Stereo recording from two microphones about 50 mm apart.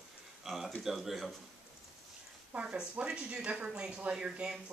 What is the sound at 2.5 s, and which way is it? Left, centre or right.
Speech, right.